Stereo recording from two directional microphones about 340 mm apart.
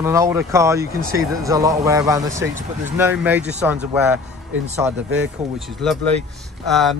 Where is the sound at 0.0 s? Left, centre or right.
Centre.